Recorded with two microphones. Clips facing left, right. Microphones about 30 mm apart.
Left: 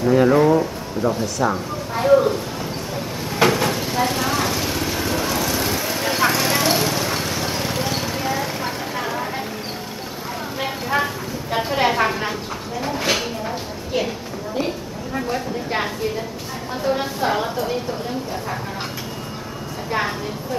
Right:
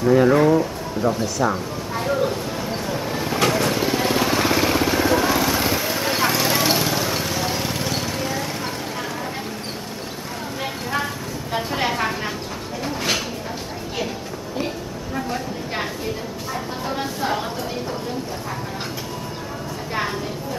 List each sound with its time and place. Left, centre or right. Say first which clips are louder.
0.0 s speech: even; centre
3.3 s vehicle: left 3 dB; centre
3.8 s vehicle: right 1 dB; centre
5.7 s vehicle: even; centre
6.3 s horse: left 1 dB; centre
10.6 s vehicle: left 4 dB; centre
11.5 s a sound: left 4 dB; centre
15.1 s speech: left 3 dB; centre
19.9 s speech: left 3 dB; centre